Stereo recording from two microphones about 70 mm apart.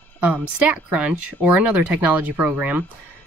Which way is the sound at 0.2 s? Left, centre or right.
Centre.